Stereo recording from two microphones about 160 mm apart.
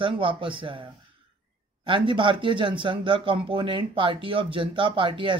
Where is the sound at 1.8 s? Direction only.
30° right (ahead or behind).